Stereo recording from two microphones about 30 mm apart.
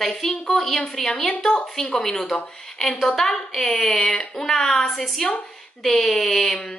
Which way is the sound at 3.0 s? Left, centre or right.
Centre.